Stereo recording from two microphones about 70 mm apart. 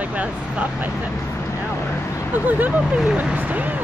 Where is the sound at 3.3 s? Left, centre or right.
Right.